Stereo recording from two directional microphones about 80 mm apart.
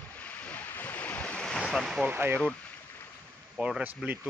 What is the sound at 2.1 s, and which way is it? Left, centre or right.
Speech, right.